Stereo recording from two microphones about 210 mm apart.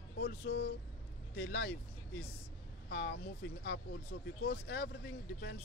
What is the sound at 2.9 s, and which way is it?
Speech, 55° left (ahead or behind).